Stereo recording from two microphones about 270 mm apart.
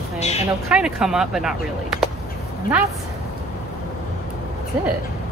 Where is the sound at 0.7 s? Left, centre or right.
Centre.